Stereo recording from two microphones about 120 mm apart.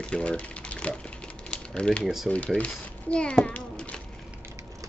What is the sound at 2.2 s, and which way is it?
A child's voice, 10° left (ahead or behind).